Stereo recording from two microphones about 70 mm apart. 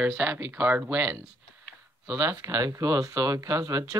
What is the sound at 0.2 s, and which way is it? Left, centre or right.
Speech, right.